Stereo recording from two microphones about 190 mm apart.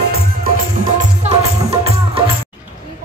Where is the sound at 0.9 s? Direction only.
35° right (ahead or behind).